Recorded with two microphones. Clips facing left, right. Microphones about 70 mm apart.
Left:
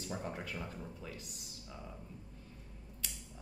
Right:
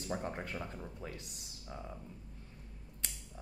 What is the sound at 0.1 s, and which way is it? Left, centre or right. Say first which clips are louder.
Speech: right 3 dB; right.